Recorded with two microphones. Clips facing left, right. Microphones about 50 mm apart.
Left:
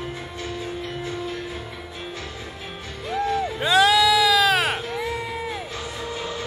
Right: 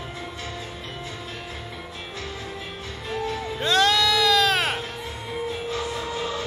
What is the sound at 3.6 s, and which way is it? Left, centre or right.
Music, centre.